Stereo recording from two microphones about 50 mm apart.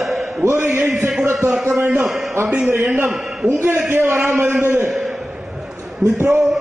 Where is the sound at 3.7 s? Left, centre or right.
Right.